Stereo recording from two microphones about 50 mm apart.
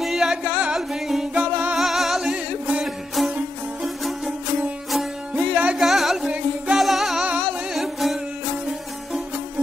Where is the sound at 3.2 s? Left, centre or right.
Centre.